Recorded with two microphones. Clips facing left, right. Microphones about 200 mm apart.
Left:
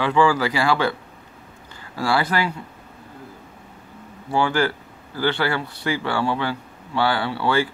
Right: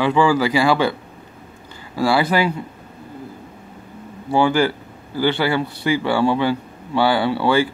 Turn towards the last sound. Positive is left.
turn(degrees=-10)  # may be behind; listen again after turning